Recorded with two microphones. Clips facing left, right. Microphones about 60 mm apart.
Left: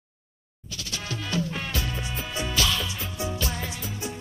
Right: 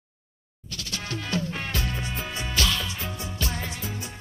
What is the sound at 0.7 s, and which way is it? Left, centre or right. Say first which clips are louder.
Music: right 1 dB; right.